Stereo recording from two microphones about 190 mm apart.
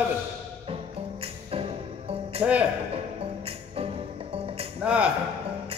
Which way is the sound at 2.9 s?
30° right (ahead or behind).